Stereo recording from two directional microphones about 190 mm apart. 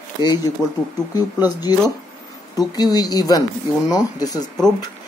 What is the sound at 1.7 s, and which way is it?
Speech, 20° left (ahead or behind).